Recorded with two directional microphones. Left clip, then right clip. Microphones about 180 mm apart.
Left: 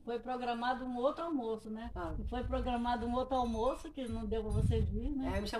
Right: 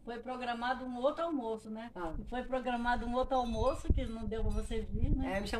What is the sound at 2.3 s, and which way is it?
Speech, 15° left (ahead or behind).